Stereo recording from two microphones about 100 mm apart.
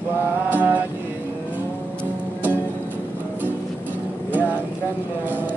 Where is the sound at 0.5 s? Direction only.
20° right (ahead or behind).